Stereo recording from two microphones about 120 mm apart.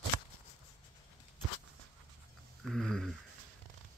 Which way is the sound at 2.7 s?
5° left (ahead or behind).